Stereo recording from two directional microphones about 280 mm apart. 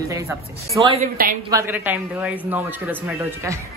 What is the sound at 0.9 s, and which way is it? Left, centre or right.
Speech, right.